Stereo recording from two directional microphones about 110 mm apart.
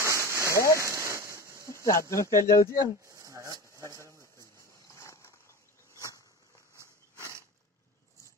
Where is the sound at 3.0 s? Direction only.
30° right (ahead or behind).